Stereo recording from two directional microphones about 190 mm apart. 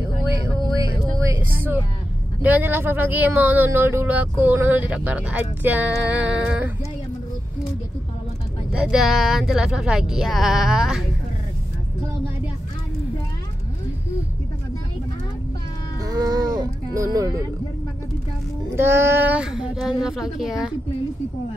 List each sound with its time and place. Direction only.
1.3 s vehicle: 10° right (ahead or behind)
2.4 s speech: 10° right (ahead or behind)
8.7 s speech: centre (ahead or behind)
16.1 s a sound: 20° right (ahead or behind)
18.8 s speech: 10° right (ahead or behind)